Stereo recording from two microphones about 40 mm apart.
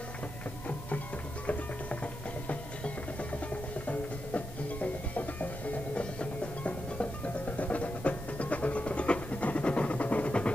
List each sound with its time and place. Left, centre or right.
0.7 s a sound: left
2.4 s music: left
5.9 s music: left
7.4 s music: left